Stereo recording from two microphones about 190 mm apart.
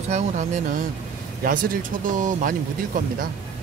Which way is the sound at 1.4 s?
45° right (ahead or behind).